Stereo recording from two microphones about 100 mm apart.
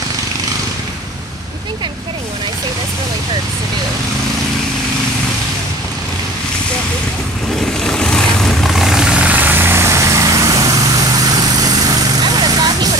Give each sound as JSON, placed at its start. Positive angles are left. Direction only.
{"t": 7.8, "sound": "vehicle", "side_deg": 5}